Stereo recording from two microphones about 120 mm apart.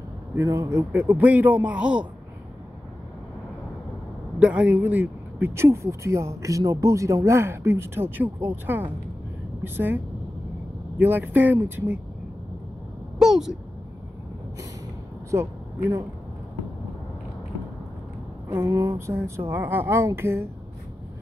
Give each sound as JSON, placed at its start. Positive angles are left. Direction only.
{"t": 0.4, "sound": "a man's voice", "side_deg": -25}
{"t": 4.4, "sound": "a man's voice", "side_deg": -10}
{"t": 13.2, "sound": "speech", "side_deg": -5}
{"t": 18.5, "sound": "speech", "side_deg": -25}